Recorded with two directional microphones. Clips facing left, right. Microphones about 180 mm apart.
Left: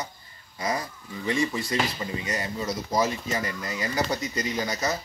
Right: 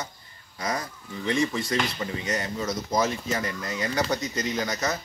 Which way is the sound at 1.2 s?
5° left (ahead or behind).